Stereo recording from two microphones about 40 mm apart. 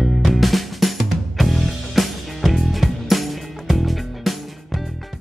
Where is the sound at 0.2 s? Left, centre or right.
Centre.